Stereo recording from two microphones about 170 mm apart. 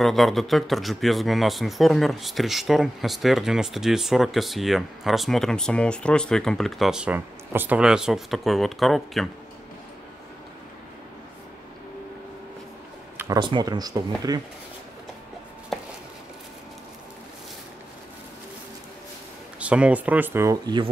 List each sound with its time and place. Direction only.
0.0 s speech: centre (ahead or behind)
13.2 s speech: 25° right (ahead or behind)
19.6 s speech: 5° right (ahead or behind); by 20.9 s 25° right (ahead or behind)